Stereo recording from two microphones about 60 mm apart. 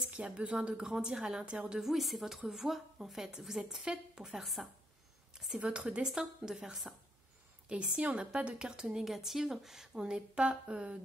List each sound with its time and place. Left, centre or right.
0.1 s a woman's voice: right
1.8 s a woman's voice: centre
7.6 s a woman's voice: centre